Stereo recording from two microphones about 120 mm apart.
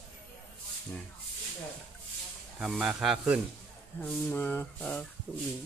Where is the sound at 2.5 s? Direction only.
Centre (ahead or behind).